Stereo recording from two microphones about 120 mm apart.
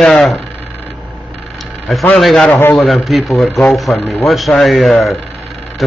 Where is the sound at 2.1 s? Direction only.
Centre (ahead or behind).